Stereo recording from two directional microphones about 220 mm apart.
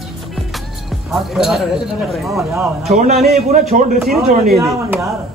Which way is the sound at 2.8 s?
30° right (ahead or behind).